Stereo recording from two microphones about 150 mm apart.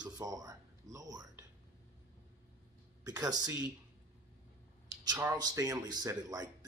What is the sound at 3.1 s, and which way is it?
Speech, 25° right (ahead or behind).